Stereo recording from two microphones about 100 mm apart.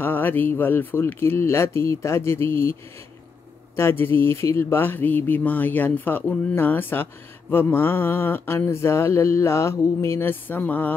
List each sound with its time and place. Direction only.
0.0 s mantra: 20° left (ahead or behind)
3.7 s mantra: 25° left (ahead or behind)